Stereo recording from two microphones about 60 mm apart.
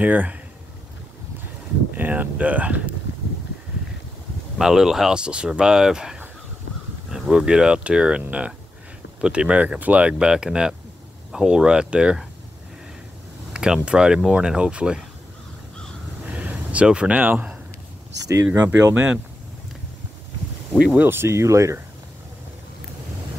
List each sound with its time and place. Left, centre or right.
0.0 s speech: right
2.0 s speech: right
4.6 s speech: centre; by 10.1 s right
10.1 s speech: centre
13.5 s a sound: centre
13.8 s speech: centre
16.3 s a sound: right
17.2 s speech: right
18.3 s speech: right
18.6 s speech: right
21.0 s speech: right